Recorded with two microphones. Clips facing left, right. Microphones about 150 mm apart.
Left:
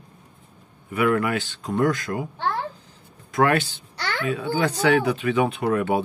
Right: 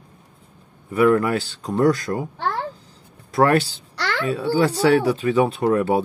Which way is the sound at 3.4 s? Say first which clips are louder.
Right 3 dB; 35° right (ahead or behind).